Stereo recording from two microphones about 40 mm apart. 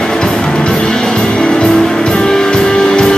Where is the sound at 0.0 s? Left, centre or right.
Centre.